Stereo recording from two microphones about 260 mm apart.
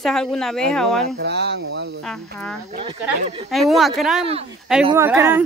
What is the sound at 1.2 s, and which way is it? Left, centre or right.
Speech, right.